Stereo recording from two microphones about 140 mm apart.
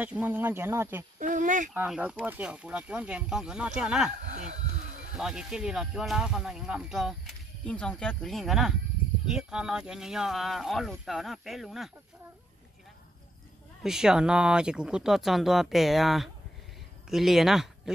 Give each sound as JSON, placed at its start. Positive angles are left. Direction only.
{"t": 0.0, "sound": "speech", "side_deg": -10}
{"t": 1.2, "sound": "speech", "side_deg": -65}
{"t": 1.7, "sound": "speech", "side_deg": -5}
{"t": 5.1, "sound": "speech", "side_deg": -5}
{"t": 13.8, "sound": "speech", "side_deg": -5}